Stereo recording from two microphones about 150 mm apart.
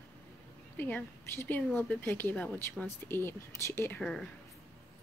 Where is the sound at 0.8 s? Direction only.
15° left (ahead or behind).